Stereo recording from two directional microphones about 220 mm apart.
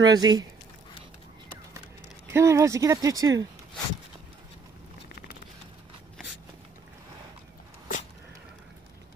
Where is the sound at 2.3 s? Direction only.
15° right (ahead or behind).